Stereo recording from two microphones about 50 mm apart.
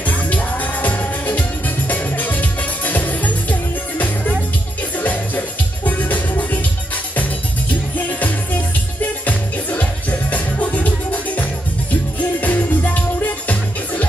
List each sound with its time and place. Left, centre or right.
0.0 s music: left
4.9 s music: left
8.1 s music: left